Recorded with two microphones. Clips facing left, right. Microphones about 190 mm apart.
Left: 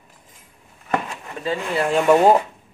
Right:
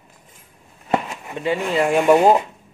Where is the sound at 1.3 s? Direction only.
20° right (ahead or behind).